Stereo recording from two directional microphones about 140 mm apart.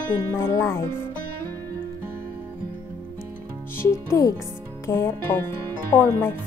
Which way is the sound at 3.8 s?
20° left (ahead or behind).